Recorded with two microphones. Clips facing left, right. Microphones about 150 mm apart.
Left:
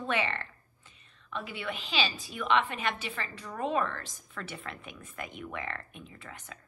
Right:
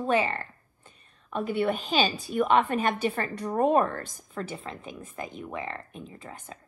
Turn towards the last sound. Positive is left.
turn(degrees=-30)  # may be behind; listen again after turning